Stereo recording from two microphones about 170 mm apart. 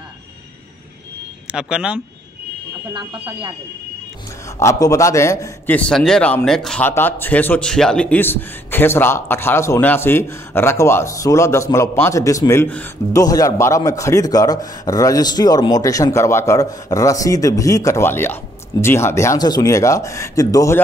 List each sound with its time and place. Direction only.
1.5 s speech: 5° right (ahead or behind)
4.6 s a man's voice: 20° left (ahead or behind)